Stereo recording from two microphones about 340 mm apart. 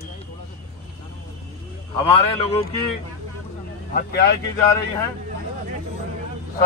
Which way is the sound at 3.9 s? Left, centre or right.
Left.